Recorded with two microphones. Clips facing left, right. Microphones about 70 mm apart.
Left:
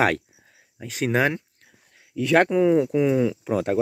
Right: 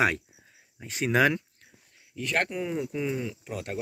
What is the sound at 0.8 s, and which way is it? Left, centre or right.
Speech, left.